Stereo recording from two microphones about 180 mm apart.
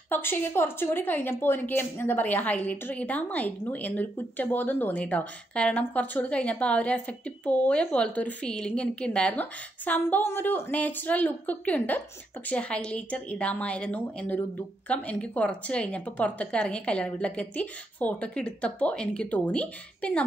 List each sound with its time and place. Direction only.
0.1 s a woman's voice: 10° left (ahead or behind)